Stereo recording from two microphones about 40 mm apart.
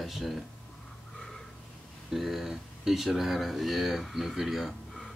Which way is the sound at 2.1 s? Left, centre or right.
Centre.